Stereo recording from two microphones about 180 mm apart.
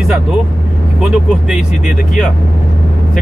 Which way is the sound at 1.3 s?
Centre (ahead or behind).